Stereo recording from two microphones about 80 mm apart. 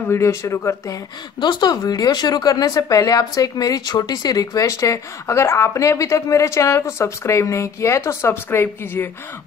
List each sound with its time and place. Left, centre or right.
0.1 s speech: left
1.4 s speech: left